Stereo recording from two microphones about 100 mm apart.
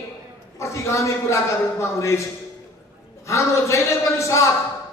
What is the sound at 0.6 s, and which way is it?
A man's voice, 30° left (ahead or behind).